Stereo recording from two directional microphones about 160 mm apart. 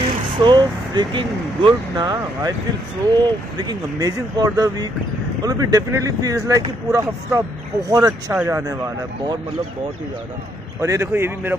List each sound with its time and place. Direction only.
0.4 s speech: 30° right (ahead or behind)
10.8 s a man's voice: 15° right (ahead or behind)